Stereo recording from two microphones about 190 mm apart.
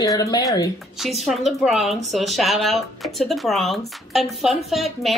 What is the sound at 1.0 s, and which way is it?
Speech, centre (ahead or behind).